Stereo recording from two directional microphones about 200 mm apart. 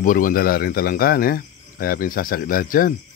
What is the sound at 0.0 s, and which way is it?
Speech, 45° left (ahead or behind).